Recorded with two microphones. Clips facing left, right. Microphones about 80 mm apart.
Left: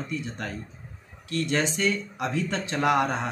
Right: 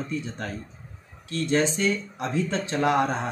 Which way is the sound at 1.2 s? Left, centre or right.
Right.